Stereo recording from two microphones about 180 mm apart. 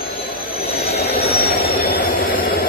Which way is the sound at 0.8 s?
60° left (ahead or behind).